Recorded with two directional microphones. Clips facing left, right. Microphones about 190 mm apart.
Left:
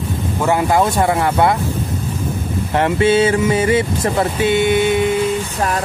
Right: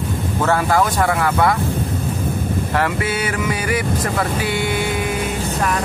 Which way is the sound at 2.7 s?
25° left (ahead or behind).